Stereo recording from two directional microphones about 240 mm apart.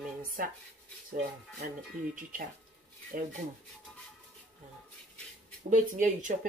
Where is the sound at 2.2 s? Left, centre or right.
Right.